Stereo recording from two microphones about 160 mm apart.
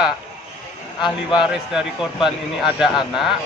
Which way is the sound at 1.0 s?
30° left (ahead or behind).